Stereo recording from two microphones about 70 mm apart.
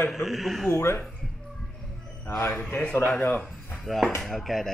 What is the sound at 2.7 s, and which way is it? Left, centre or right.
Speech, left.